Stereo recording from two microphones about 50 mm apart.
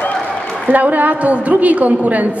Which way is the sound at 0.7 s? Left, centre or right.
Right.